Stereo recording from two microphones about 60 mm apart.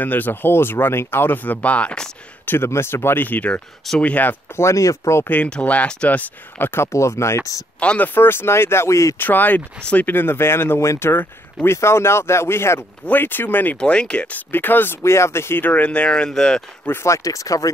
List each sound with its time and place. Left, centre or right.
0.0 s speech: left; by 2.1 s centre
2.4 s speech: left
4.6 s speech: left
5.3 s speech: left
6.7 s speech: left
7.8 s speech: centre
8.1 s speech: left
9.2 s speech: left
13.1 s speech: left
13.7 s speech: centre
14.5 s speech: left
15.0 s speech: left
15.6 s speech: left; by 16.6 s centre
17.0 s speech: left